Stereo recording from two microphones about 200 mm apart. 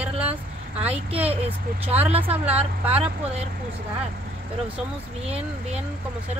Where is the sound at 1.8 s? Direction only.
10° right (ahead or behind).